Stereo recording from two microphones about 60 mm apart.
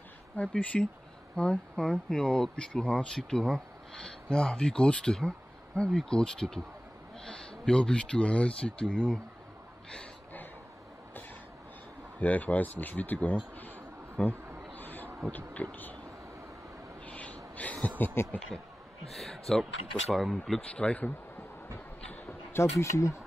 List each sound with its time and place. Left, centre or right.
0.4 s speech: left
12.2 s speech: left
14.2 s speech: centre
14.7 s a sound: left
15.3 s speech: left
17.0 s a sound: left
19.0 s speech: centre
20.6 s speech: left
21.7 s a sound: left
22.5 s speech: left